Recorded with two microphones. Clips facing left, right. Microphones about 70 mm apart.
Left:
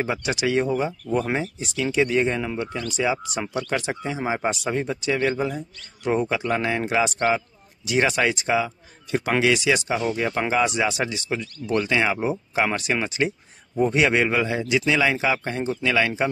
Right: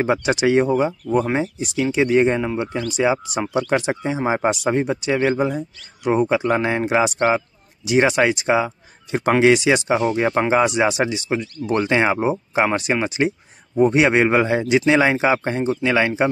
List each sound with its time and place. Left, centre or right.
0.0 s speech: right
1.3 s speech: centre